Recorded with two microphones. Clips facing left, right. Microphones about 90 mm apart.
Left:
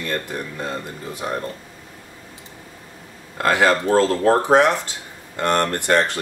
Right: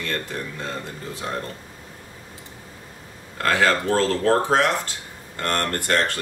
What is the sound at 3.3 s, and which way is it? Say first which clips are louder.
Speech: left 3 dB; 15° left (ahead or behind).